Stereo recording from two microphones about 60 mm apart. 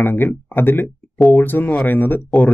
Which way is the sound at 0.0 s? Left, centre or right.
Left.